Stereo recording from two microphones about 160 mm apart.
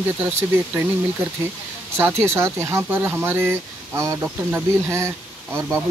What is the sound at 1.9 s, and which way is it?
Speech, 15° right (ahead or behind).